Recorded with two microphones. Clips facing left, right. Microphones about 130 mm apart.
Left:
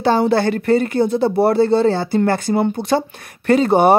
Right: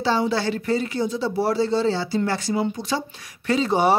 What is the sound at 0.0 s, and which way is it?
Speech, 55° left (ahead or behind).